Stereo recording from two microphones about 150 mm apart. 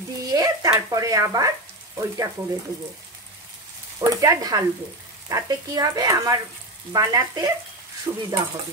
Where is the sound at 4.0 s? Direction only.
20° right (ahead or behind).